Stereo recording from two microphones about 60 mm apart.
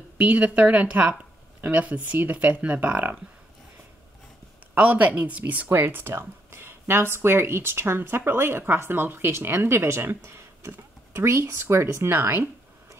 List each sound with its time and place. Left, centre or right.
0.2 s a woman's voice: right
4.7 s a woman's voice: right